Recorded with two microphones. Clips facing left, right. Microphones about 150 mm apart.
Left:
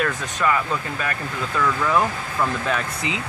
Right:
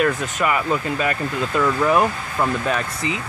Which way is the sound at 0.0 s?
15° right (ahead or behind).